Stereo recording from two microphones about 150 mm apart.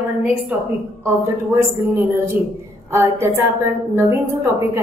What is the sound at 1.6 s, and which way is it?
A woman's voice, 20° right (ahead or behind).